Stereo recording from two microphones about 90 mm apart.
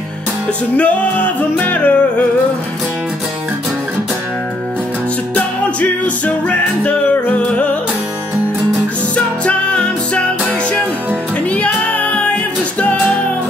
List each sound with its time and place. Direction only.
0.7 s music: 15° left (ahead or behind)
5.3 s music: 15° left (ahead or behind)
9.1 s music: 10° left (ahead or behind)
11.5 s music: 15° left (ahead or behind)